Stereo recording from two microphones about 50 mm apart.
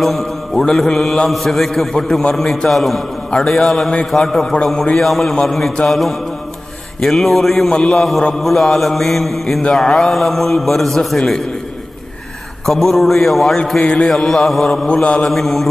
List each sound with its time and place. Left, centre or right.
0.0 s mantra: centre
0.7 s a man's voice: centre
5.2 s a man's voice: centre
12.6 s a man's voice: centre
13.7 s a man's voice: centre